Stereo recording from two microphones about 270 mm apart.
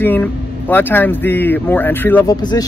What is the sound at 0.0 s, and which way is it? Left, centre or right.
Speech, centre.